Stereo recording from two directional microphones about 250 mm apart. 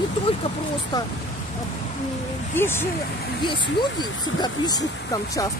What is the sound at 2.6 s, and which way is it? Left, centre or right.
Speech, centre.